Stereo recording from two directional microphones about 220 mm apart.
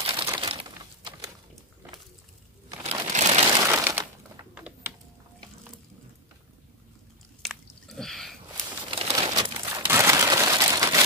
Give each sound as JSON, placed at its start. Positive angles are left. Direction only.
{"t": 0.0, "sound": "a sound", "side_deg": -25}
{"t": 2.8, "sound": "crushing", "side_deg": -30}
{"t": 3.6, "sound": "crumpling", "side_deg": -10}
{"t": 7.4, "sound": "squish", "side_deg": 0}
{"t": 8.9, "sound": "crumpling", "side_deg": -25}